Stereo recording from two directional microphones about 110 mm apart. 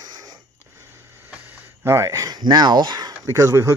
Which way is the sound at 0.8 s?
25° right (ahead or behind).